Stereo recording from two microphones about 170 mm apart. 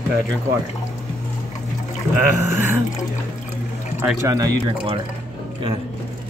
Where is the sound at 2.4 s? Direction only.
15° right (ahead or behind).